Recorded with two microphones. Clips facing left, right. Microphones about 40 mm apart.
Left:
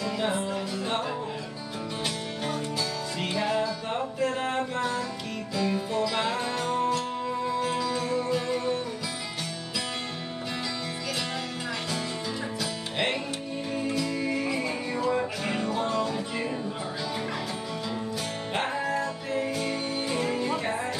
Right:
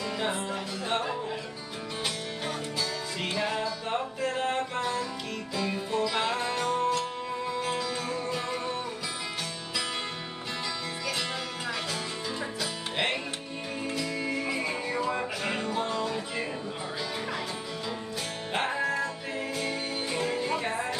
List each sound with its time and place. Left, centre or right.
0.0 s music: centre
2.4 s music: centre
12.9 s music: centre
18.5 s music: centre